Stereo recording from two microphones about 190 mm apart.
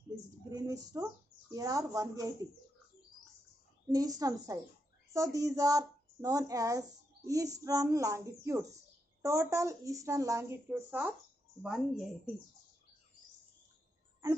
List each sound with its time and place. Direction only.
0.5 s a sound: 20° right (ahead or behind)
1.5 s a woman's voice: 20° right (ahead or behind)
3.9 s a woman's voice: 20° right (ahead or behind); by 12.1 s centre (ahead or behind)